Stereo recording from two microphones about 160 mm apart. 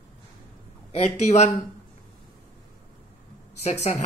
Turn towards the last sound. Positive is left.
turn(degrees=45)  # may be behind; listen again after turning